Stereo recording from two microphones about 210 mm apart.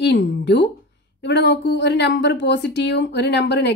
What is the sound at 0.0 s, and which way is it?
A woman's voice, 55° left (ahead or behind).